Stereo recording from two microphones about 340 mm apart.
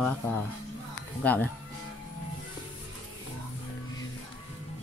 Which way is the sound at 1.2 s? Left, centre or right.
Centre.